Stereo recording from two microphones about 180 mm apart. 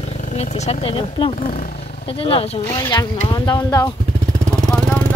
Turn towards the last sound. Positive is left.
turn(degrees=5)  # may be behind; listen again after turning